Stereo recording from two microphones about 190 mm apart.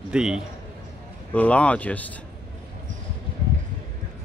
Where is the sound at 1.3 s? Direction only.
5° left (ahead or behind).